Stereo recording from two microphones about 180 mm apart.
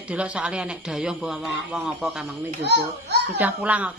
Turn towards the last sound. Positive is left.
turn(degrees=-10)  # may be behind; listen again after turning